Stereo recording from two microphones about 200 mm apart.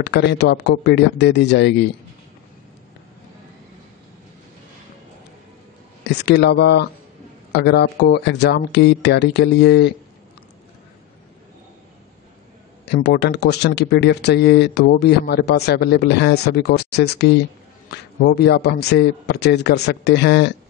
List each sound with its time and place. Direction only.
0.0 s speech: 60° left (ahead or behind)
6.0 s speech: 55° left (ahead or behind)
12.8 s a man's voice: 55° left (ahead or behind)